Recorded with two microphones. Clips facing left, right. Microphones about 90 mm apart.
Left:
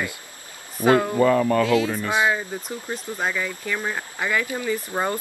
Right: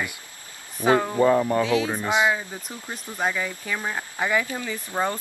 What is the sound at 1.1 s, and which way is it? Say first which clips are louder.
Speech: left 1 dB; 20° right (ahead or behind).